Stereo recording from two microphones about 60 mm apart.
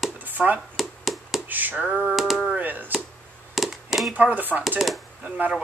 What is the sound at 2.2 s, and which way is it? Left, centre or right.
Speech, centre.